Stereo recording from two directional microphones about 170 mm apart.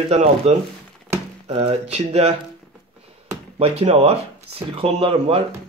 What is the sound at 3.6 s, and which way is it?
Speech, 35° right (ahead or behind).